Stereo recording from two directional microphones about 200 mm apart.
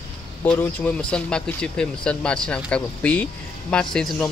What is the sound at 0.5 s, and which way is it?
Speech, 5° left (ahead or behind).